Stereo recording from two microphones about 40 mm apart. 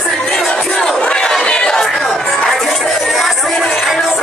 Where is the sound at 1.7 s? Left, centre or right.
Centre.